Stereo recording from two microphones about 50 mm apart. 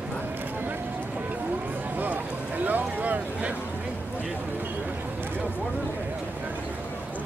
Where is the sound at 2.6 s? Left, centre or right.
Right.